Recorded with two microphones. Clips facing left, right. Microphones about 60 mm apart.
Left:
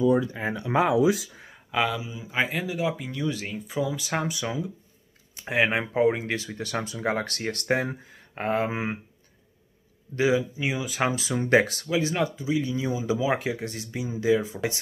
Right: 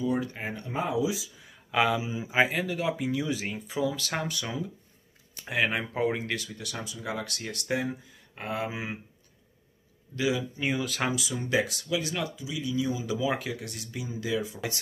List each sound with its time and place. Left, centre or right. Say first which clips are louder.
0.7 s speech: left 8 dB; left
1.7 s speech: right 1 dB; centre
2.0 s speech: right 3 dB; right
2.3 s speech: right 1 dB; centre
3.9 s speech: left 3 dB; centre
5.3 s speech: left 4 dB; left
10.1 s speech: left 6 dB; left
10.5 s speech: left 1 dB; centre
11.1 s speech: left 6 dB; left
11.9 s speech: left 5 dB; left